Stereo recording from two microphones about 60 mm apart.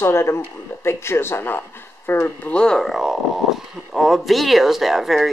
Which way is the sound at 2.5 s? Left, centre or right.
Centre.